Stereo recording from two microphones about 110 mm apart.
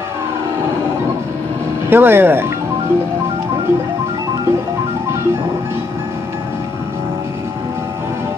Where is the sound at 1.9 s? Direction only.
20° right (ahead or behind).